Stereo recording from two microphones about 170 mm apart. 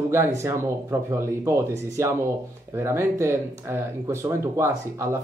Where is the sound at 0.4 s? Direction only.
15° right (ahead or behind).